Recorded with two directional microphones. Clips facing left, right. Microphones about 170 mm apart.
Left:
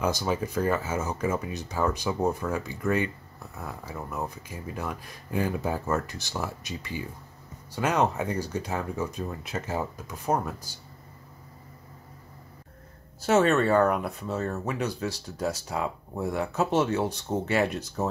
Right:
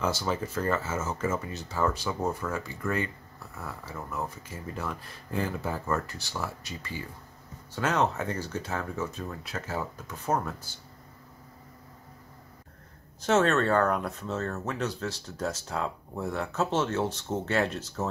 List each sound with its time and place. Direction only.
0.0 s speech: 15° left (ahead or behind)
13.2 s speech: 10° left (ahead or behind)